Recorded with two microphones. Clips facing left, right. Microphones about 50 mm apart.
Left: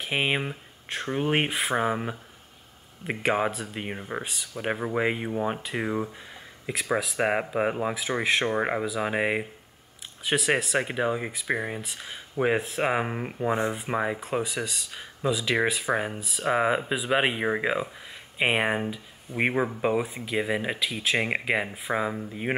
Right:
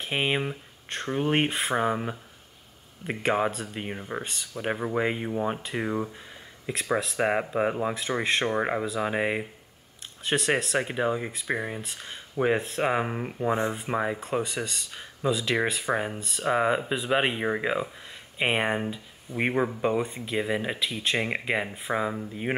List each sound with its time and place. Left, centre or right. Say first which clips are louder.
0.0 s speech: even; centre